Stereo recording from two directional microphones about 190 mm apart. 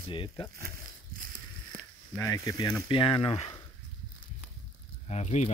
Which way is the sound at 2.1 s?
45° right (ahead or behind).